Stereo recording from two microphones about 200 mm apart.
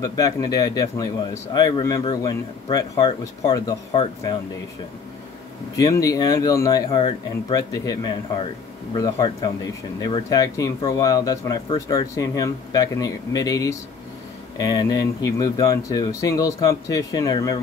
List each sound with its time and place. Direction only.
0.0 s speech: 15° left (ahead or behind)
5.8 s speech: 15° left (ahead or behind)